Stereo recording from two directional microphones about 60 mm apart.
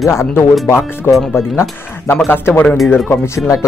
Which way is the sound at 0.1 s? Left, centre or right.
Left.